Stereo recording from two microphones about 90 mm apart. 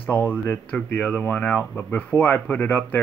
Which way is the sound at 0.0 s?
20° left (ahead or behind).